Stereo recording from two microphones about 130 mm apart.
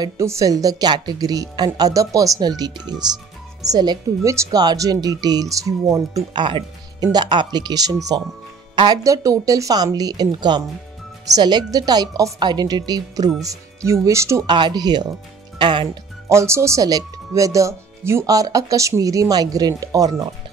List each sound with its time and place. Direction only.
0.0 s a woman's voice: 25° right (ahead or behind)
14.4 s a woman's voice: 35° right (ahead or behind)
16.3 s speech: 20° right (ahead or behind)